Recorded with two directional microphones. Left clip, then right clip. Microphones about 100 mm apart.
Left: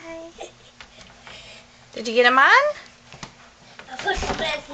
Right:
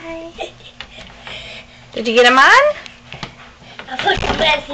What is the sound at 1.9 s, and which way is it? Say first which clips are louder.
Speech: right 6 dB; 20° left (ahead or behind).